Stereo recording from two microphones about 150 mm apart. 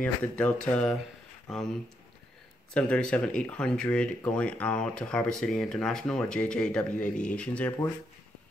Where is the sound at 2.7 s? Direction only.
5° left (ahead or behind).